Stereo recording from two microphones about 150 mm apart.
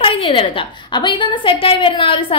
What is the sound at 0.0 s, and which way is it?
A woman's voice, 35° left (ahead or behind).